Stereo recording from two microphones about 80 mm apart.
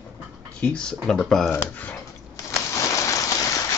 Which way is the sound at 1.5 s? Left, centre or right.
Left.